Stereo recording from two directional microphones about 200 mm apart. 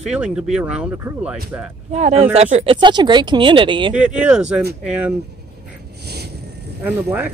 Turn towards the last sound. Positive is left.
turn(degrees=-10)  # may be behind; listen again after turning